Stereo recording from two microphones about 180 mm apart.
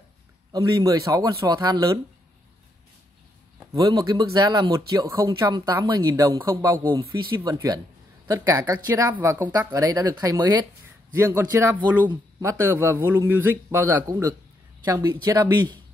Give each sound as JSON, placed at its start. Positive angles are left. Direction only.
{"t": 0.5, "sound": "speech", "side_deg": -20}
{"t": 3.7, "sound": "speech", "side_deg": -20}